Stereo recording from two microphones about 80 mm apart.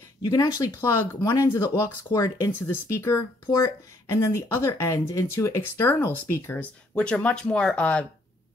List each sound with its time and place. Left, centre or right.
0.2 s speech: left
0.8 s speech: left
2.1 s speech: left
2.6 s speech: left
6.6 s speech: centre